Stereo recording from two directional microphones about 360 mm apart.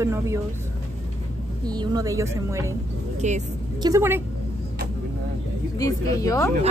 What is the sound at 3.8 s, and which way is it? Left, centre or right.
Speech, centre.